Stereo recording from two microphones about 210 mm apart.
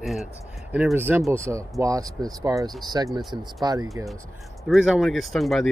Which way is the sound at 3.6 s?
15° right (ahead or behind).